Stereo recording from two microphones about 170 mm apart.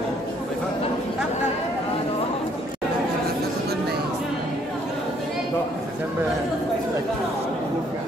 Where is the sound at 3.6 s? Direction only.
65° right (ahead or behind).